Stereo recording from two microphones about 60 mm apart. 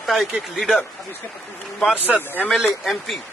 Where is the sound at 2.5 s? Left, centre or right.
Centre.